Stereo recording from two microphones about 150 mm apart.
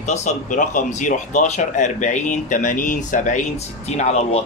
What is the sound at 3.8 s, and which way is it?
Speech, 45° left (ahead or behind).